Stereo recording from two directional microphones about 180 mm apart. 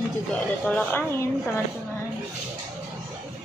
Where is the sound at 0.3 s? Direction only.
5° left (ahead or behind).